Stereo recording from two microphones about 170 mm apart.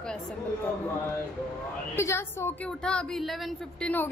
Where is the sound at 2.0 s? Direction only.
15° left (ahead or behind).